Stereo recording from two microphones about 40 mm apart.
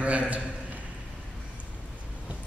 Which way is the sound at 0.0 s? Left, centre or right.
Right.